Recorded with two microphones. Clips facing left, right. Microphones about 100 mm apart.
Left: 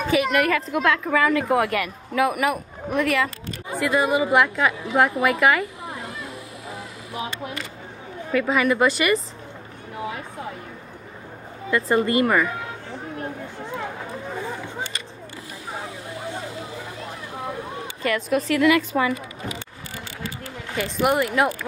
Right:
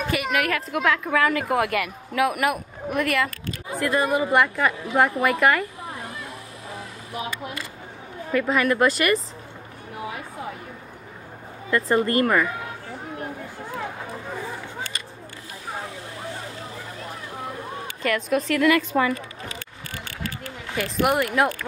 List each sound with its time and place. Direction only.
0.0 s a woman's voice: centre (ahead or behind)
7.2 s speech: 25° left (ahead or behind)
8.3 s a woman's voice: 5° left (ahead or behind)
11.7 s a woman's voice: 10° left (ahead or behind)
18.0 s a woman's voice: centre (ahead or behind)
20.7 s a woman's voice: centre (ahead or behind)